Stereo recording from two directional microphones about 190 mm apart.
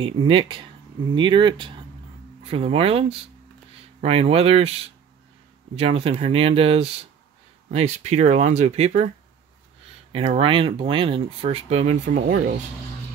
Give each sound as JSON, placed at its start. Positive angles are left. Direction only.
{"t": 0.0, "sound": "speech", "side_deg": -30}
{"t": 10.1, "sound": "speech", "side_deg": -30}